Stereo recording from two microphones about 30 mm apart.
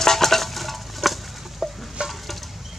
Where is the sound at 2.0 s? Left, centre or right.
Right.